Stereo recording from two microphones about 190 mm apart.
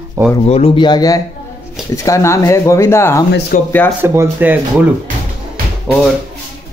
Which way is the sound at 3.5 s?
45° left (ahead or behind).